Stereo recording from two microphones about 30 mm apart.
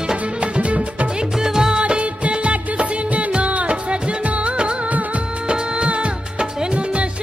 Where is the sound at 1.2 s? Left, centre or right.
Right.